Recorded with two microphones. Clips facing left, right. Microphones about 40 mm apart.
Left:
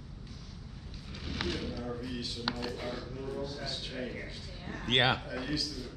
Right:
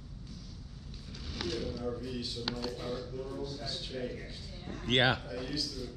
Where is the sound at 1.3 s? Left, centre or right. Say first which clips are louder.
Left 1 dB; left.